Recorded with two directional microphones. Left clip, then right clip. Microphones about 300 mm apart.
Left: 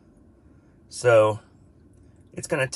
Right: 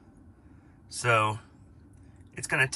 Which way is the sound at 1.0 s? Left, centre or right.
Centre.